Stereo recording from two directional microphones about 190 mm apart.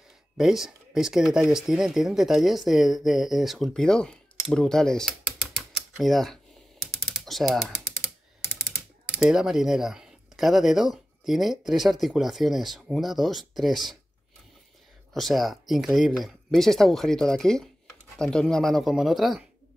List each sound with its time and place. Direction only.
0.4 s speech: centre (ahead or behind)
5.6 s typewriter: centre (ahead or behind)
7.2 s speech: centre (ahead or behind)
15.1 s speech: centre (ahead or behind)